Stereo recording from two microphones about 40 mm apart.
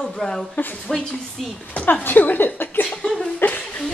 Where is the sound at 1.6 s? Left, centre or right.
Left.